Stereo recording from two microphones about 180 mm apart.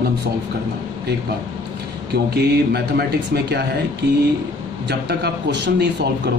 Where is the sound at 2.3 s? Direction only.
65° right (ahead or behind).